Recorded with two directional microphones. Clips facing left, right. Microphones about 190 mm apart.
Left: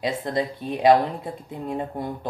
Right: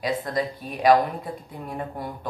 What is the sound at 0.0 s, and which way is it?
Speech, 25° left (ahead or behind).